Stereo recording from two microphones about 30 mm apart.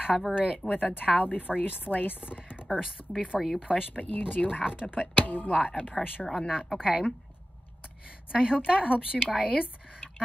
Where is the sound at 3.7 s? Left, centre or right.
Left.